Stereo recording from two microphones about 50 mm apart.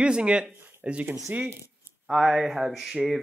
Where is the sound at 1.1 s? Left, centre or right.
Right.